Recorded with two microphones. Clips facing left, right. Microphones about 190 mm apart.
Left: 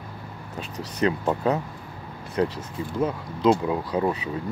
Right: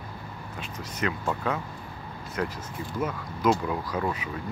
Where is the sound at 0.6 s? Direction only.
35° left (ahead or behind).